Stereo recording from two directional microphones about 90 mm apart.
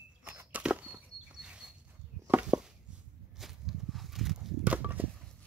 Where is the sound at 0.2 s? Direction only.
20° right (ahead or behind).